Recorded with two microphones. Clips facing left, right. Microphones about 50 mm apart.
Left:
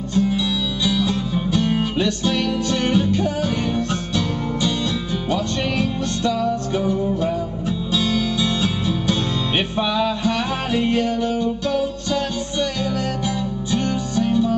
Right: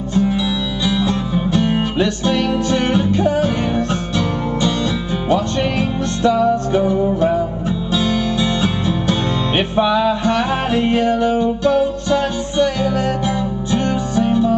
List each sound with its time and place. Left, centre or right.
0.1 s music: centre